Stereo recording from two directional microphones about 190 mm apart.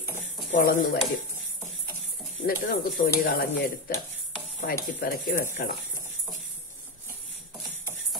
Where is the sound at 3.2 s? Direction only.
55° left (ahead or behind).